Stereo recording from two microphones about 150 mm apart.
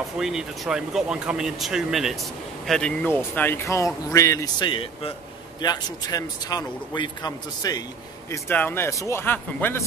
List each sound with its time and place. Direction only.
0.2 s speech: 5° right (ahead or behind); by 4.6 s 20° left (ahead or behind)
4.6 s a man's voice: 35° left (ahead or behind)
8.3 s speech: 10° left (ahead or behind)